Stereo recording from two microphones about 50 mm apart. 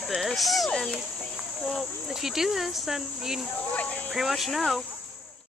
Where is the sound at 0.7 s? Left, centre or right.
Centre.